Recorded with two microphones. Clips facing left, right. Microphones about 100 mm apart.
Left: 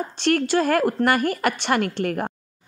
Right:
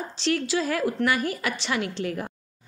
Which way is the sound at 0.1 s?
55° left (ahead or behind).